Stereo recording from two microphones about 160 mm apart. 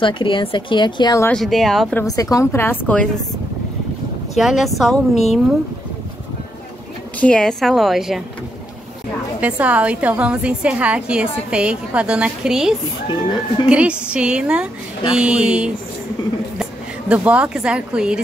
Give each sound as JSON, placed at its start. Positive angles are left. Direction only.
{"t": 0.0, "sound": "speech", "side_deg": 30}
{"t": 1.2, "sound": "a woman's voice", "side_deg": 5}
{"t": 2.0, "sound": "a woman's voice", "side_deg": 20}
{"t": 4.4, "sound": "a woman's voice", "side_deg": 0}
{"t": 7.2, "sound": "a woman's voice", "side_deg": 5}
{"t": 9.4, "sound": "a woman's voice", "side_deg": -10}
{"t": 17.1, "sound": "a woman's voice", "side_deg": -10}